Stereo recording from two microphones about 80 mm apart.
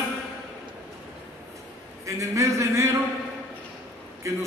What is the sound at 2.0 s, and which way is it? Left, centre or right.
Speech, right.